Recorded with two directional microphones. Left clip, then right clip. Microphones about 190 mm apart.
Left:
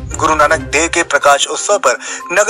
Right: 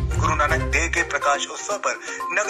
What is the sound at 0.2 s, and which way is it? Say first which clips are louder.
A man's voice: left 10 dB; 55° left (ahead or behind).